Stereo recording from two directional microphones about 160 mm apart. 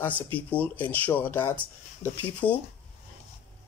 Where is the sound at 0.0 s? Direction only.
10° left (ahead or behind).